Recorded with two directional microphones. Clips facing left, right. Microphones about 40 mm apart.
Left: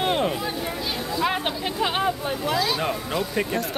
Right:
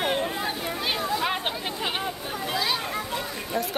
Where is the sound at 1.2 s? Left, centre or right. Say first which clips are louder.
Left 3 dB; centre.